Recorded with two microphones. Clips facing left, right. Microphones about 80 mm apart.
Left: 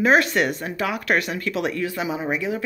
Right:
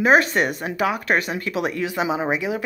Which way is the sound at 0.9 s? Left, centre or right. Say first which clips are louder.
Right 1 dB; centre.